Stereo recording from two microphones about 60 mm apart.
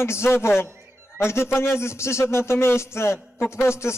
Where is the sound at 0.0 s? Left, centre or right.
Left.